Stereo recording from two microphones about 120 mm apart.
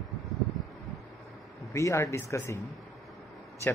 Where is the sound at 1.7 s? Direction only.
25° left (ahead or behind).